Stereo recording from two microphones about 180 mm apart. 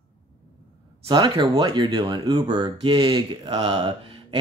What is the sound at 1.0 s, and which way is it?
Speech, 25° right (ahead or behind).